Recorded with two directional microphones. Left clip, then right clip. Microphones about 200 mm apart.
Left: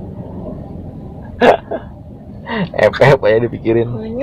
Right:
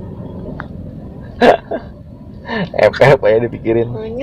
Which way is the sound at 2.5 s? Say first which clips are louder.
Right 1 dB; 10° left (ahead or behind).